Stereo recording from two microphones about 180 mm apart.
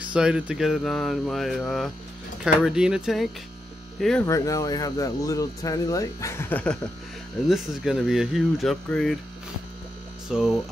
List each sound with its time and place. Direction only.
0.0 s speech: 5° right (ahead or behind)
4.3 s speech: 20° left (ahead or behind)
7.4 s speech: centre (ahead or behind)
10.2 s hum: 5° right (ahead or behind)